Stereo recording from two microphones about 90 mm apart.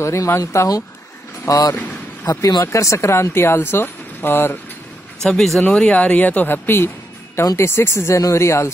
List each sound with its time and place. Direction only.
0.0 s speech: 30° left (ahead or behind)
2.6 s speech: 35° left (ahead or behind)
5.2 s speech: 5° left (ahead or behind); by 8.7 s 30° left (ahead or behind)